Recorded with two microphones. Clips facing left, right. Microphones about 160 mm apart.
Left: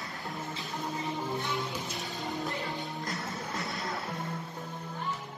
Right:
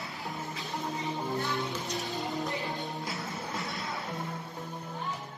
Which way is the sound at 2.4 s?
20° right (ahead or behind).